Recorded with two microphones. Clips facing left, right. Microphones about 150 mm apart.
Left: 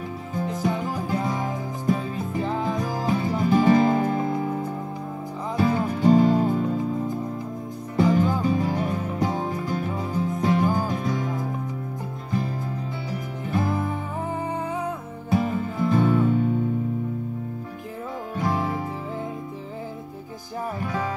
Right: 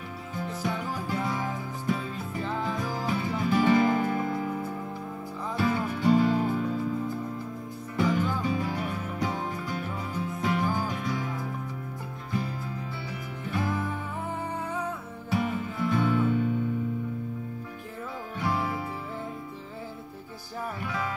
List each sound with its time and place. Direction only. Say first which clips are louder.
0.6 s music: left 5 dB; 40° left (ahead or behind)
4.2 s music: left 4 dB; 20° left (ahead or behind)
5.6 s music: left 5 dB; 40° left (ahead or behind)
7.9 s music: left 6 dB; 40° left (ahead or behind)
13.5 s music: left 5 dB; 40° left (ahead or behind)
15.2 s music: left 5 dB; 40° left (ahead or behind)
18.4 s music: left 4 dB; 45° left (ahead or behind)
20.8 s music: left 5 dB; 40° left (ahead or behind)